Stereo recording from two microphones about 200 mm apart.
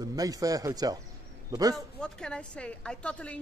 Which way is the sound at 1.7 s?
5° left (ahead or behind).